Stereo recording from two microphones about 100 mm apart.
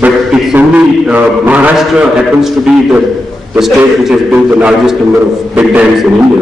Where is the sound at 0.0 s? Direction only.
10° right (ahead or behind).